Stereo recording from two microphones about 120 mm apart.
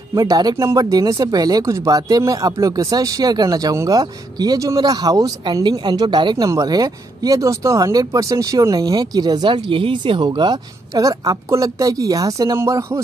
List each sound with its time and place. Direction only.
0.1 s speech: 30° right (ahead or behind)
6.3 s speech: 30° right (ahead or behind)